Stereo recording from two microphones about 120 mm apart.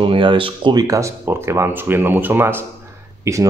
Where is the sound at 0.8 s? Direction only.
25° right (ahead or behind).